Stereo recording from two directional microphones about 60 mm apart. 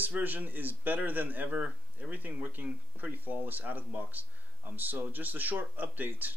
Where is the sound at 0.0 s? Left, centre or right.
Right.